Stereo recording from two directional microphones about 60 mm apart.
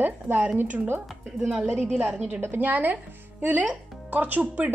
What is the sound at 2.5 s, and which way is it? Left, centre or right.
Speech, right.